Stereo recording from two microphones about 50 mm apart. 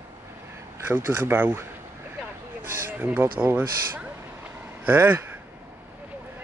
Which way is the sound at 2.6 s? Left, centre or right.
Right.